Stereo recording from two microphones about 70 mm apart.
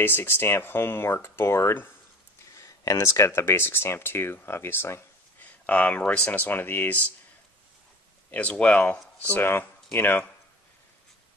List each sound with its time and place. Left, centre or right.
0.0 s speech: left
2.5 s speech: left
5.4 s speech: left
8.3 s speech: centre